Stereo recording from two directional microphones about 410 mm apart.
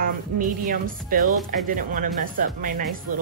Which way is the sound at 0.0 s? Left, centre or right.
Centre.